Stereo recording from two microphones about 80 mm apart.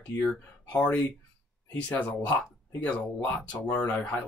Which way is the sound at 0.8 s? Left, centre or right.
Left.